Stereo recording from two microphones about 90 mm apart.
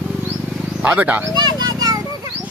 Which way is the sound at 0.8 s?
20° right (ahead or behind).